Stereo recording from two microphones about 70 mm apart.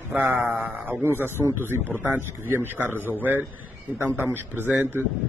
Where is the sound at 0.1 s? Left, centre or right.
Right.